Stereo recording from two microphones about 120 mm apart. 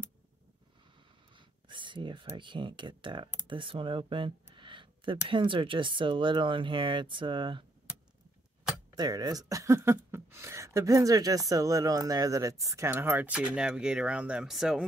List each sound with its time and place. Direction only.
1.3 s speech: 40° right (ahead or behind)
8.9 s speech: 35° right (ahead or behind); by 14.9 s 5° right (ahead or behind)